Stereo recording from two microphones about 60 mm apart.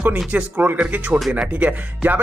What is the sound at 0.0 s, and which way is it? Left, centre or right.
Speech, right.